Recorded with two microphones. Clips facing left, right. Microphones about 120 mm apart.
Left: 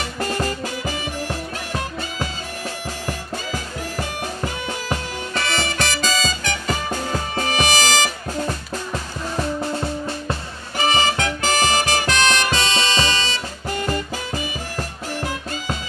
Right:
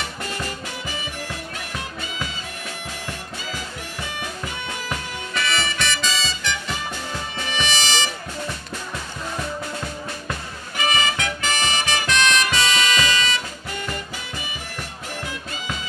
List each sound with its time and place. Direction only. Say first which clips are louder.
0.2 s music: left 7 dB; 40° left (ahead or behind)
3.1 s music: left 7 dB; 40° left (ahead or behind)